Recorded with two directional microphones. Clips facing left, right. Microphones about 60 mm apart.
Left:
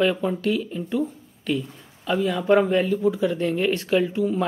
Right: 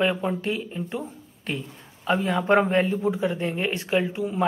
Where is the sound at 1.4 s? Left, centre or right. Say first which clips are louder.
Left 6 dB; right.